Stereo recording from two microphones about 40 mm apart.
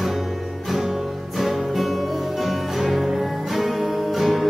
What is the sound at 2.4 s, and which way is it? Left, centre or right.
Music, centre.